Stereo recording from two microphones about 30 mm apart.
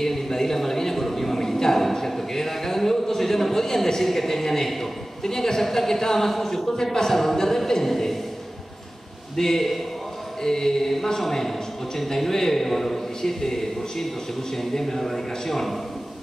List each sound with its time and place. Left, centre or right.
0.0 s a sound: centre
5.2 s speech: centre
9.4 s speech: centre